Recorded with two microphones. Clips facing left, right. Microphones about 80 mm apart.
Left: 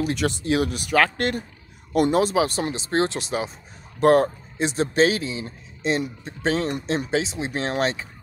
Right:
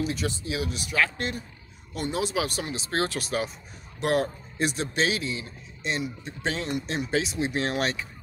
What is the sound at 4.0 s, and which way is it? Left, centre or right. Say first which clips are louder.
Speech: left 8 dB; left.